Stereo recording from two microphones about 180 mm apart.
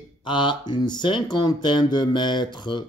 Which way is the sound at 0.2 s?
25° left (ahead or behind).